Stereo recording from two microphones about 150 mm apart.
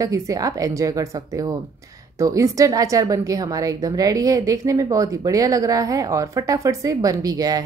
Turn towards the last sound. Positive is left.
turn(degrees=-25)  # may be behind; listen again after turning